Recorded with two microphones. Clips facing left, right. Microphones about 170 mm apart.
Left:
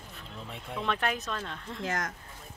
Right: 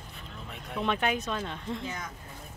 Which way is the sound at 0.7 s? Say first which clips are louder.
Right 3 dB; 5° right (ahead or behind).